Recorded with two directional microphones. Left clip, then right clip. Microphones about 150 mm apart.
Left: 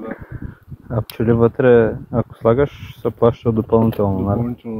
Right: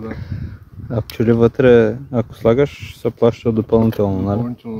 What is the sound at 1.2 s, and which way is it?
Speech, 50° right (ahead or behind).